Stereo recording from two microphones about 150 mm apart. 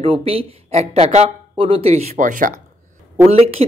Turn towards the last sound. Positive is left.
turn(degrees=-40)  # may be behind; listen again after turning